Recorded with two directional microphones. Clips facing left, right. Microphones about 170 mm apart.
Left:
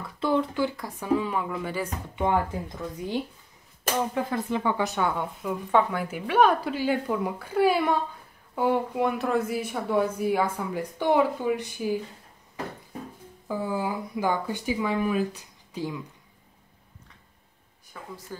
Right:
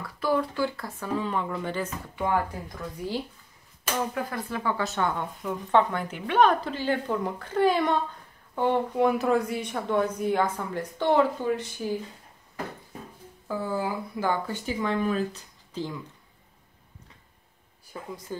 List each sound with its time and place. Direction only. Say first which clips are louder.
0.2 s speech: left 1 dB; 20° left (ahead or behind)
13.5 s speech: left 1 dB; 15° left (ahead or behind)
18.3 s speech: right 5 dB; 20° right (ahead or behind)